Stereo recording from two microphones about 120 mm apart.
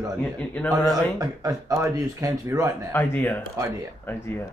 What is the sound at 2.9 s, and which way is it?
Speech, 15° left (ahead or behind).